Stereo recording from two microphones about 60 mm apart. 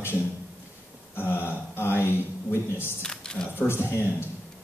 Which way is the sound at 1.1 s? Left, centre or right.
Left.